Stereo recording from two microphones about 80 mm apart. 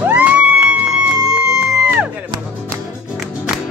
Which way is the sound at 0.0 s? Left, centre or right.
Centre.